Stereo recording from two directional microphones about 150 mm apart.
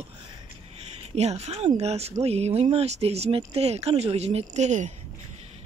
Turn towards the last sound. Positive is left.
turn(degrees=-50)  # may be behind; listen again after turning